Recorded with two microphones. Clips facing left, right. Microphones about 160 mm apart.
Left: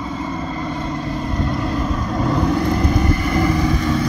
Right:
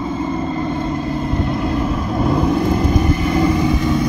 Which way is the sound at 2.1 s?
5° right (ahead or behind).